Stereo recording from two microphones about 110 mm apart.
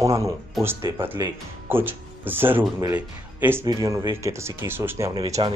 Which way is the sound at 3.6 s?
30° right (ahead or behind).